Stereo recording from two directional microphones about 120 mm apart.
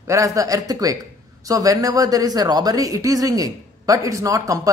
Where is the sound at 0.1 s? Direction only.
25° right (ahead or behind).